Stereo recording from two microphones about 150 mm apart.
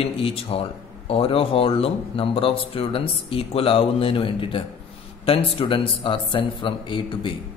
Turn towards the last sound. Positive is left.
turn(degrees=35)  # may be behind; listen again after turning